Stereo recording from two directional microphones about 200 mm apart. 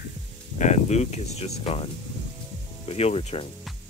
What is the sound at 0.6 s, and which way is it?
Speech, 35° left (ahead or behind).